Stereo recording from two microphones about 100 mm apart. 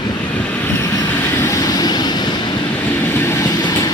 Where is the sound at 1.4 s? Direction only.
40° left (ahead or behind).